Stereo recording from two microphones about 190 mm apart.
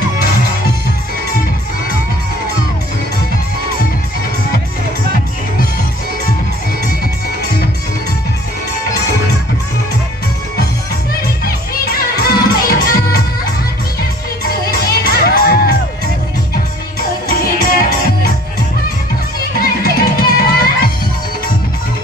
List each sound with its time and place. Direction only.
12.2 s music: 50° left (ahead or behind)
15.2 s music: 55° left (ahead or behind)
17.3 s music: 50° left (ahead or behind)
19.4 s music: 55° left (ahead or behind)